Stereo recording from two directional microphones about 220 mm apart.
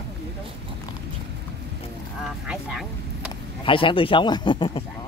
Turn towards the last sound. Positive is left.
turn(degrees=20)  # may be behind; listen again after turning